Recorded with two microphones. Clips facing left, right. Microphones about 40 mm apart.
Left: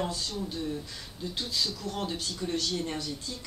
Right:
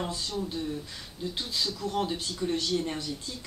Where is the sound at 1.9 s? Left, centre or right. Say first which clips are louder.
Right 3 dB; centre.